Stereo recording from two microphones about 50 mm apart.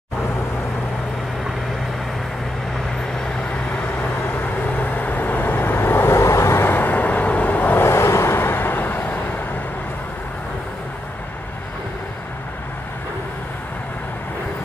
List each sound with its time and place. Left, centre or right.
4.7 s vehicle: left
6.2 s vehicle: left
6.7 s vehicle: left
7.8 s vehicle: left
8.4 s vehicle: left